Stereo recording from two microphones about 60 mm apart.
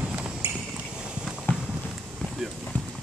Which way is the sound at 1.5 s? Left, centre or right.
Left.